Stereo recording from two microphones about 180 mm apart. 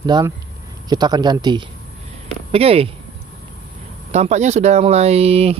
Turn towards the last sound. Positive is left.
turn(degrees=-35)  # may be behind; listen again after turning